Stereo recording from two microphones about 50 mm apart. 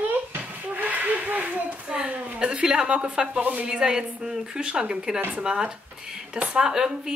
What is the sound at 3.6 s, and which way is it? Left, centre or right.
A woman's voice, centre.